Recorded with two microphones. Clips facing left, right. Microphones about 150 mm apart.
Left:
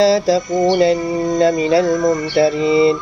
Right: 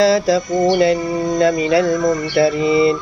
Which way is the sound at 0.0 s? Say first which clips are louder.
Left 1 dB; 35° left (ahead or behind).